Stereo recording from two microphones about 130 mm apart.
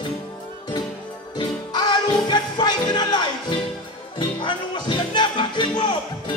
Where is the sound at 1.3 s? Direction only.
35° left (ahead or behind).